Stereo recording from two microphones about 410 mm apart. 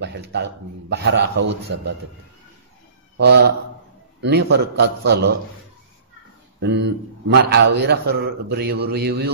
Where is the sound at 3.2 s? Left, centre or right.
Right.